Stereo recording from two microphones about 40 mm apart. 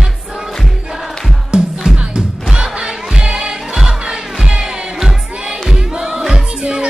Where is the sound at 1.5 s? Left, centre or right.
Right.